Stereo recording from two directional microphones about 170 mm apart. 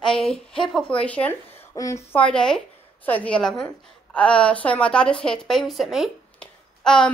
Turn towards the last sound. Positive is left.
turn(degrees=5)  # may be behind; listen again after turning